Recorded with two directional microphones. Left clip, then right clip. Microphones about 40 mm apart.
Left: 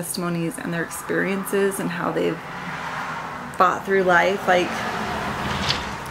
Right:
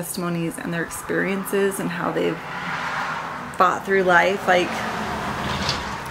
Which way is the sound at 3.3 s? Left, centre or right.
Centre.